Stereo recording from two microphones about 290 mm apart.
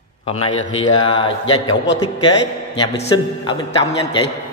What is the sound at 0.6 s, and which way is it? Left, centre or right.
A man's voice, centre.